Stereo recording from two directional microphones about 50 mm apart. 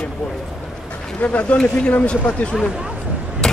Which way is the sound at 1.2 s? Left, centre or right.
Left.